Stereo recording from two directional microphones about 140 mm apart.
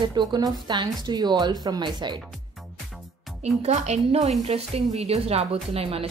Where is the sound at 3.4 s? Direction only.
55° right (ahead or behind).